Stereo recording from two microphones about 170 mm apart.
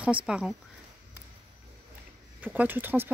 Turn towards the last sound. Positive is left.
turn(degrees=-10)  # may be behind; listen again after turning